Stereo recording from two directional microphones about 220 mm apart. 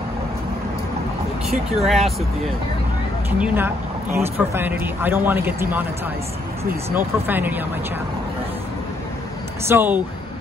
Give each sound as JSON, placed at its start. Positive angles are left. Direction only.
{"t": 1.5, "sound": "speech", "side_deg": 0}
{"t": 3.3, "sound": "speech", "side_deg": -5}
{"t": 9.7, "sound": "speech", "side_deg": -10}